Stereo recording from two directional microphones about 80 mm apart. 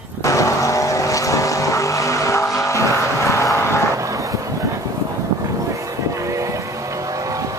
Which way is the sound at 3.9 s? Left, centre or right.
Right.